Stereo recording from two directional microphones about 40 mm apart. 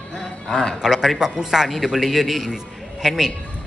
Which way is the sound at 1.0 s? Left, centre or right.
Centre.